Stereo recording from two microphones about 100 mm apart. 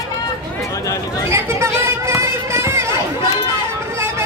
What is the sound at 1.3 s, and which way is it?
Run, 30° right (ahead or behind).